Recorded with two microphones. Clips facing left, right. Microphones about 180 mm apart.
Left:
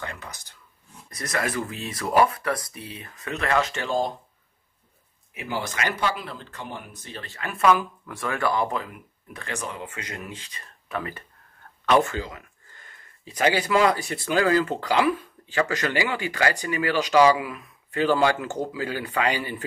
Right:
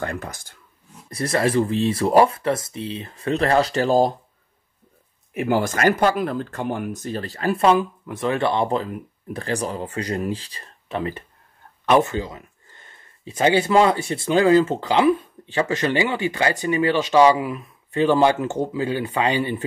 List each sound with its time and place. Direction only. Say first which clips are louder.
0.0 s speech: right 8 dB; 50° right (ahead or behind)
1.1 s speech: right 8 dB; 30° right (ahead or behind)
5.3 s speech: right 10 dB; 50° right (ahead or behind); by 19.6 s 25° right (ahead or behind)